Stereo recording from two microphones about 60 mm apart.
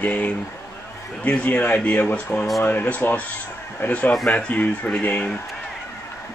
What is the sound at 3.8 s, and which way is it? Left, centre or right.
Speech, left.